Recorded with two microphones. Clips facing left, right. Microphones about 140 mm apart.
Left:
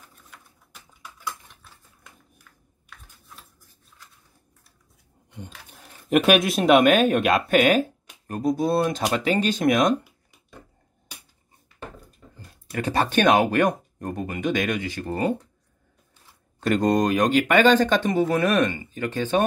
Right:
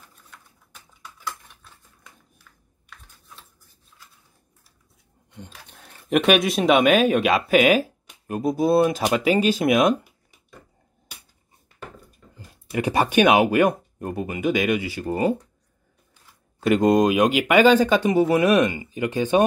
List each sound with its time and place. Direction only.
0.1 s a sound: 5° left (ahead or behind)
5.5 s speech: 5° left (ahead or behind)
12.4 s speech: 10° right (ahead or behind)
16.5 s speech: 5° right (ahead or behind)